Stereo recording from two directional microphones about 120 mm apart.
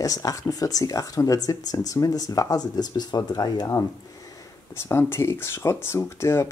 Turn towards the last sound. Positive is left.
turn(degrees=20)  # may be behind; listen again after turning